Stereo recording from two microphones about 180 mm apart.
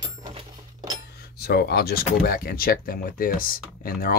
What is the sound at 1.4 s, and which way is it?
Speech, 65° left (ahead or behind).